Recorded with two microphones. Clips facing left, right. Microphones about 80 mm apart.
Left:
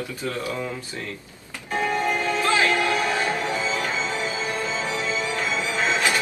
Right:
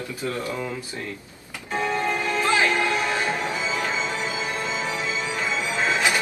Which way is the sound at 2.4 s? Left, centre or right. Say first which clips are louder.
Right 1 dB; centre.